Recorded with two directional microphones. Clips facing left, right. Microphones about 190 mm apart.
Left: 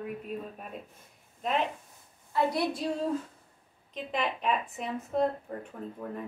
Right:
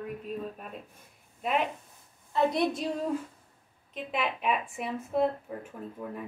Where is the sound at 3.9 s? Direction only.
5° right (ahead or behind).